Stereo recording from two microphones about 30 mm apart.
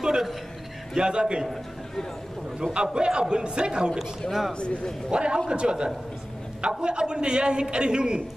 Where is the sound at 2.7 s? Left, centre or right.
Right.